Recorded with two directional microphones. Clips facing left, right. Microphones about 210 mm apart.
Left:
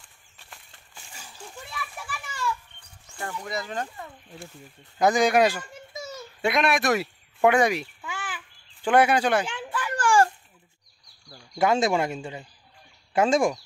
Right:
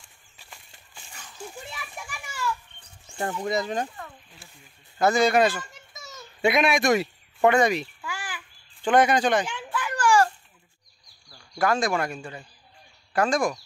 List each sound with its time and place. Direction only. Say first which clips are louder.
1.5 s children playing: left 1 dB; 15° right (ahead or behind)
3.3 s speech: right 4 dB; 20° right (ahead or behind)
4.9 s a man's voice: even; 15° left (ahead or behind)
6.4 s speech: right 2 dB; centre (ahead or behind)
9.9 s a sound: even; 50° left (ahead or behind)
11.2 s speech: left 2 dB; 20° left (ahead or behind)